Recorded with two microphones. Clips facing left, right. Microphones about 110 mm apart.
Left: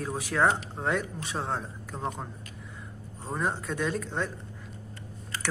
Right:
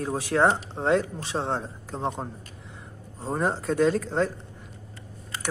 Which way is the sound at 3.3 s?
35° right (ahead or behind).